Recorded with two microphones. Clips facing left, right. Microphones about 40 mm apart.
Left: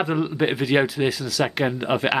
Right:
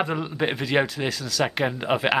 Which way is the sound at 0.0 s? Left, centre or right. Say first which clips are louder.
Left 3 dB; centre.